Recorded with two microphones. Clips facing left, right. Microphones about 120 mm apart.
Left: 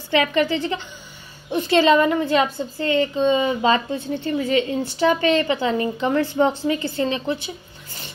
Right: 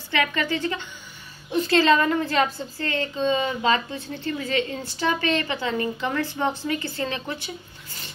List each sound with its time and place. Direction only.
0.1 s a woman's voice: 25° left (ahead or behind)
3.6 s a woman's voice: 25° left (ahead or behind)